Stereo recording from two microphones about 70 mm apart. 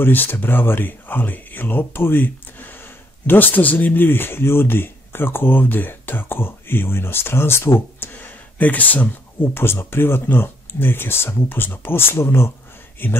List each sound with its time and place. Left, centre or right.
0.0 s speech: left